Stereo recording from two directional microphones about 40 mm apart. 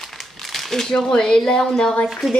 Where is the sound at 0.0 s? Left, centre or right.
Centre.